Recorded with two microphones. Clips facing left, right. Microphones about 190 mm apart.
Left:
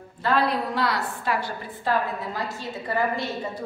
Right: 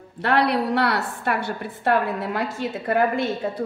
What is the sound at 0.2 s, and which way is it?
A woman's voice, 70° right (ahead or behind).